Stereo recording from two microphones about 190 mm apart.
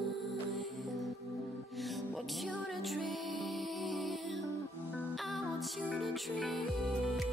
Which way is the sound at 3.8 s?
Centre (ahead or behind).